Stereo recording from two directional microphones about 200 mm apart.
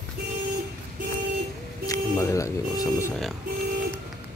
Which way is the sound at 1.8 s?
15° left (ahead or behind).